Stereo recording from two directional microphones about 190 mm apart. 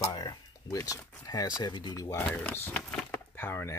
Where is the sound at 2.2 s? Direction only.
5° left (ahead or behind).